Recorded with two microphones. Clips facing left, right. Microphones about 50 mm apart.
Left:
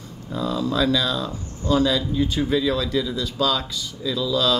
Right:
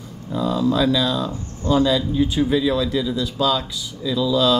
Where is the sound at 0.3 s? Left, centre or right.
Centre.